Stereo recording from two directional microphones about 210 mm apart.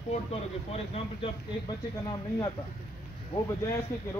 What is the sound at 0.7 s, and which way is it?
Speech, 25° left (ahead or behind).